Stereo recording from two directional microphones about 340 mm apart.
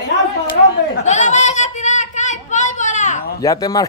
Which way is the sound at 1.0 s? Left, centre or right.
Left.